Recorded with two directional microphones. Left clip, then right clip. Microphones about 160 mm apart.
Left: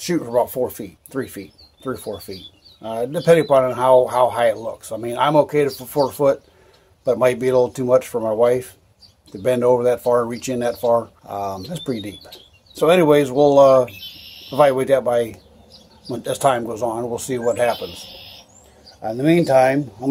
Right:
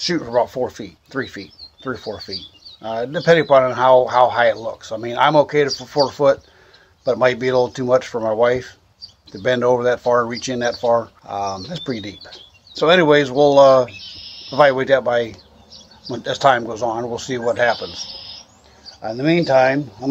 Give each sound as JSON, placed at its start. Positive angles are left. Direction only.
{"t": 0.2, "sound": "speech", "side_deg": 5}
{"t": 5.7, "sound": "speech", "side_deg": 0}
{"t": 7.1, "sound": "speech", "side_deg": 15}
{"t": 9.9, "sound": "speech", "side_deg": 0}
{"t": 10.2, "sound": "speech", "side_deg": 15}
{"t": 10.8, "sound": "speech", "side_deg": 0}
{"t": 11.2, "sound": "speech", "side_deg": 20}
{"t": 18.9, "sound": "speech", "side_deg": 25}